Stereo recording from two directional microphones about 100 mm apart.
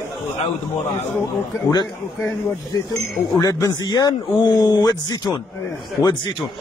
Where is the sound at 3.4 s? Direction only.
35° left (ahead or behind).